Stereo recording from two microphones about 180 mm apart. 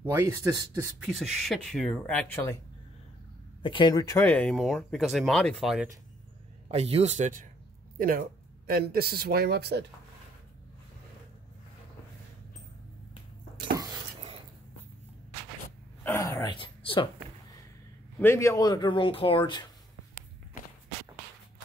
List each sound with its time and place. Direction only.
0.1 s speech: 15° right (ahead or behind)
1.0 s speech: centre (ahead or behind)
3.6 s speech: 25° left (ahead or behind)
4.3 s speech: 5° left (ahead or behind)
6.7 s a man's voice: 35° right (ahead or behind)
8.0 s speech: 55° right (ahead or behind)
16.0 s a sound: 15° left (ahead or behind)
18.2 s speech: 15° left (ahead or behind)